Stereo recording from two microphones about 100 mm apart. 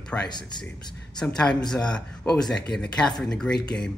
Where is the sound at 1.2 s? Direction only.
5° left (ahead or behind).